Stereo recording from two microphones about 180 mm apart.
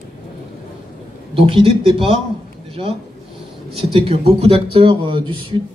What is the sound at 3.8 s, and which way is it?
Speech, 30° right (ahead or behind).